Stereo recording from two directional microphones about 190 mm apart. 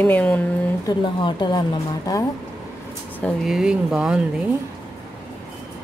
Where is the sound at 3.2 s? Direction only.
5° left (ahead or behind).